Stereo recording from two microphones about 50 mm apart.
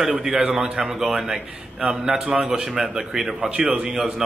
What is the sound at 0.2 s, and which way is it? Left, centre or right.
A man's voice, centre.